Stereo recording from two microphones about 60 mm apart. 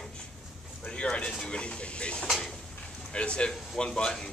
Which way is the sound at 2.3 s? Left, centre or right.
Centre.